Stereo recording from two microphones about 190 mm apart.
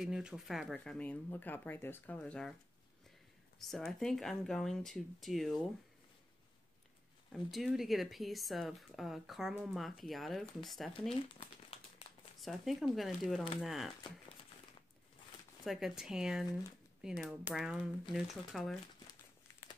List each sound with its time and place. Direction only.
0.0 s speech: 5° right (ahead or behind)
3.5 s speech: centre (ahead or behind)
7.3 s speech: centre (ahead or behind)
12.1 s a sound: 25° left (ahead or behind)
12.4 s speech: centre (ahead or behind)
15.6 s speech: centre (ahead or behind)